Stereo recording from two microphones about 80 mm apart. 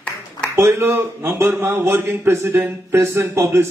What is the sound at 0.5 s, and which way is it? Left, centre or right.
A man's voice, right.